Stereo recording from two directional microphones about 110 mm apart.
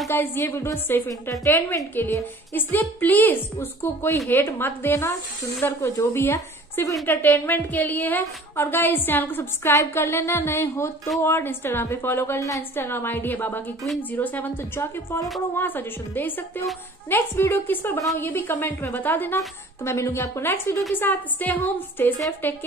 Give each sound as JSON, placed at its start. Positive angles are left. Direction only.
{"t": 0.1, "sound": "a woman's voice", "side_deg": 20}